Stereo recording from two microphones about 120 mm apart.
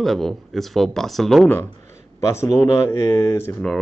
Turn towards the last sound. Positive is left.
turn(degrees=5)  # may be behind; listen again after turning